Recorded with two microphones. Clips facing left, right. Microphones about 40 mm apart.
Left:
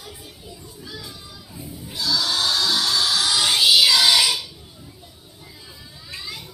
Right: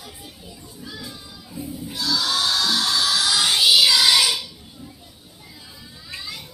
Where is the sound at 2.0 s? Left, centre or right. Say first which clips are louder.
Even; centre.